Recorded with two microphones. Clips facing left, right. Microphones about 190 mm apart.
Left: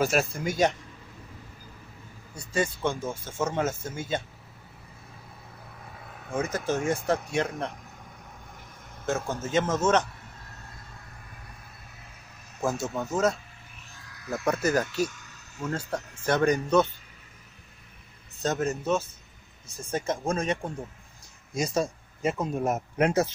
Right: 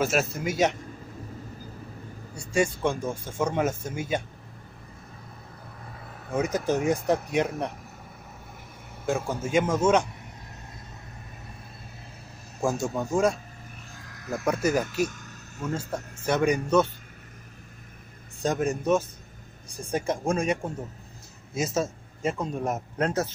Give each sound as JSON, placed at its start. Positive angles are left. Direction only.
{"t": 0.0, "sound": "speech", "side_deg": 0}
{"t": 2.3, "sound": "speech", "side_deg": -10}
{"t": 5.9, "sound": "vehicle", "side_deg": 0}
{"t": 6.3, "sound": "speech", "side_deg": -15}
{"t": 9.0, "sound": "speech", "side_deg": -10}
{"t": 12.6, "sound": "speech", "side_deg": -15}
{"t": 15.0, "sound": "a sound", "side_deg": -55}
{"t": 15.9, "sound": "speech", "side_deg": -10}
{"t": 18.4, "sound": "speech", "side_deg": -15}